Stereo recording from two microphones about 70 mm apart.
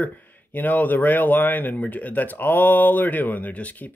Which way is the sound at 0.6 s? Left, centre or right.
Left.